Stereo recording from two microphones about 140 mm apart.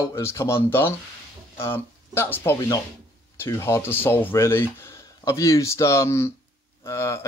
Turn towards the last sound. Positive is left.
turn(degrees=20)  # may be behind; listen again after turning